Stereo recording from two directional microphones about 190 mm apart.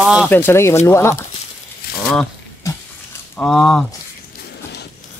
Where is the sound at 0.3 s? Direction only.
10° left (ahead or behind).